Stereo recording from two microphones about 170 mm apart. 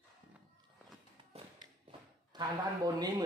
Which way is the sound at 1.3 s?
35° right (ahead or behind).